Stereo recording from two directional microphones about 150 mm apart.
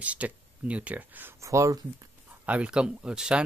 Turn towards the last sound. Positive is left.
turn(degrees=-5)  # may be behind; listen again after turning